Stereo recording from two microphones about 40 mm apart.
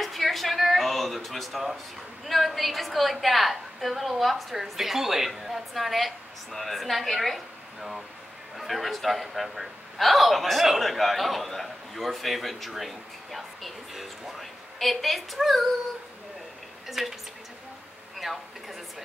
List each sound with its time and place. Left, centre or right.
0.0 s a sound: centre
2.2 s a man's voice: centre
16.8 s speech: centre
18.1 s speech: centre